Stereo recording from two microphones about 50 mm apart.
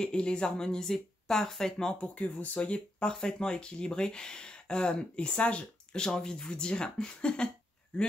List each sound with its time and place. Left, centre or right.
0.0 s speech: centre
2.0 s speech: left